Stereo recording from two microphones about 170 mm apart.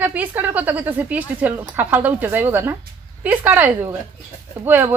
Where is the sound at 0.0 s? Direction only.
10° right (ahead or behind).